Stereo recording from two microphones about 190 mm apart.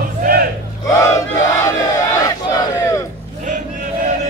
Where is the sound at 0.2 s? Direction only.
50° right (ahead or behind).